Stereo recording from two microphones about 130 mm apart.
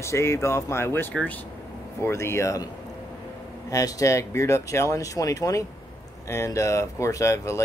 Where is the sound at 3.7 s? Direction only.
25° left (ahead or behind).